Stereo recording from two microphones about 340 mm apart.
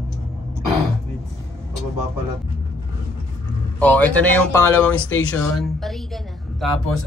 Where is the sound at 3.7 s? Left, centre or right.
Centre.